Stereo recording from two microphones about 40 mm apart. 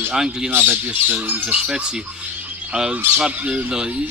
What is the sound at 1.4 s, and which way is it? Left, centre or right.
Speech, right.